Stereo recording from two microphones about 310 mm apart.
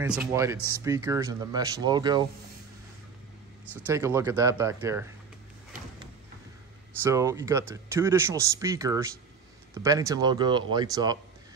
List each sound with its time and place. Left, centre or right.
0.0 s speech: centre
3.8 s speech: centre
7.0 s speech: centre